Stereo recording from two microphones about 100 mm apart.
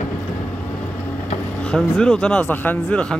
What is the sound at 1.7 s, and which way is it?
Speech, centre (ahead or behind).